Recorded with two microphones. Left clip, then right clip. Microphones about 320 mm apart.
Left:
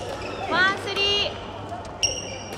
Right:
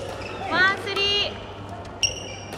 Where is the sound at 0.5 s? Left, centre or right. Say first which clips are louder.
Right 1 dB; centre.